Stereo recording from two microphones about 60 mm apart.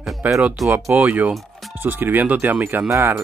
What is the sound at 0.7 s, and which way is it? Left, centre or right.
Speech, right.